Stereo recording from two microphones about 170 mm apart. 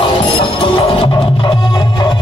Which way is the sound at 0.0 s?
30° left (ahead or behind).